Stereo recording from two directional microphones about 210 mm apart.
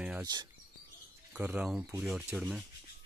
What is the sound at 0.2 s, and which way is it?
Speech, 20° right (ahead or behind).